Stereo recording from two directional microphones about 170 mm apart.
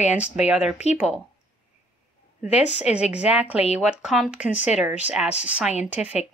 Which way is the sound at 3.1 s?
5° right (ahead or behind).